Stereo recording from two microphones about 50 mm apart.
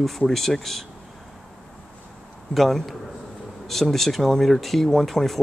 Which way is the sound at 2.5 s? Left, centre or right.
Centre.